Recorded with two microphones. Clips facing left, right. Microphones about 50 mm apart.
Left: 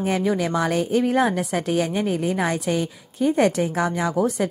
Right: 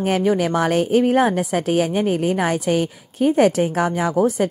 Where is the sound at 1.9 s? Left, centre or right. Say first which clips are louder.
Right 4 dB; right.